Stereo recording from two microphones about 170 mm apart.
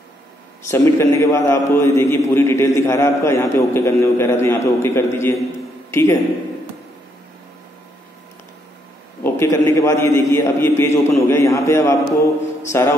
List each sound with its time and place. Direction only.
0.7 s a man's voice: 15° left (ahead or behind)
5.9 s a sound: 15° left (ahead or behind)
9.2 s a man's voice: 15° left (ahead or behind)